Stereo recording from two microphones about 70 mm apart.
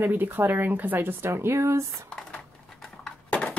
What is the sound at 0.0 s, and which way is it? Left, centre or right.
Speech, right.